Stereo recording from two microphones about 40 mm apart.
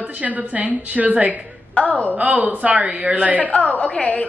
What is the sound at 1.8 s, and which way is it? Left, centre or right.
Speech, left.